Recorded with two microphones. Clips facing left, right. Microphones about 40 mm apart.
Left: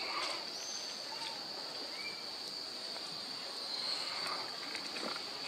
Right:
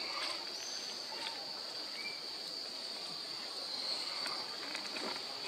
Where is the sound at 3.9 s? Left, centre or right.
Centre.